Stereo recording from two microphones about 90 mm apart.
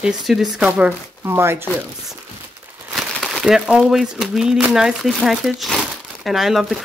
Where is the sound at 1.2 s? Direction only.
30° right (ahead or behind).